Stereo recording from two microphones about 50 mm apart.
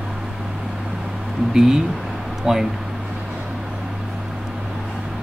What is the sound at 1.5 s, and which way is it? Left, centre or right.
Speech, centre.